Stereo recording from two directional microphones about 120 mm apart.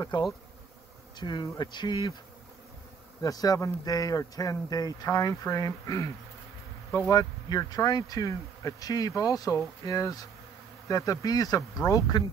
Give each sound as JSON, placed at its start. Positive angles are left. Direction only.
{"t": 0.1, "sound": "speech", "side_deg": 40}
{"t": 3.2, "sound": "speech", "side_deg": 30}